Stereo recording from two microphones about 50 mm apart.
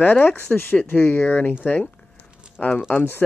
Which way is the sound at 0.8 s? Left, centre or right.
Left.